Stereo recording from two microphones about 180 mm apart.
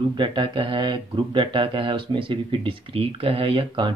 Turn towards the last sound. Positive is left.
turn(degrees=-30)  # may be behind; listen again after turning